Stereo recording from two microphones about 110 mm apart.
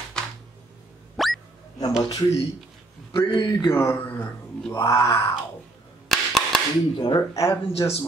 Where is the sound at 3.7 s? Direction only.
20° left (ahead or behind).